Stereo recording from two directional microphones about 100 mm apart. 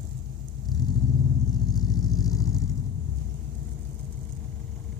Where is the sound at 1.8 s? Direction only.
40° left (ahead or behind).